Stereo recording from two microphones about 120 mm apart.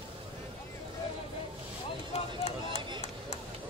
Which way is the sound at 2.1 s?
55° left (ahead or behind).